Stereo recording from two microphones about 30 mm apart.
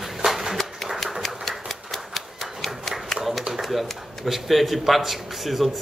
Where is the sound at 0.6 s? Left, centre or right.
Centre.